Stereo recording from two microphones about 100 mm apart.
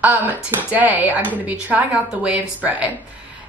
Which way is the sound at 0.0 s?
20° right (ahead or behind).